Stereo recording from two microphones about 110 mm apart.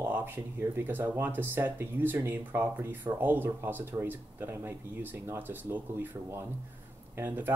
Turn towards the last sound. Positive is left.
turn(degrees=-20)  # may be behind; listen again after turning